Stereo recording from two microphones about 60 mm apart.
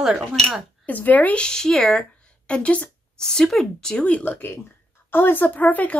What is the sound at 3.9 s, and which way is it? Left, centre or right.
Speech, left.